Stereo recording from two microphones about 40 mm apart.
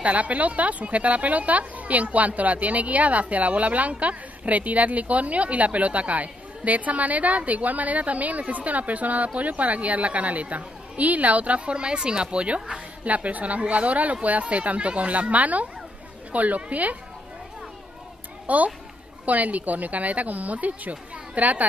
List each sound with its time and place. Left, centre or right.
0.0 s a woman's voice: right
13.0 s a woman's voice: right
18.5 s a woman's voice: right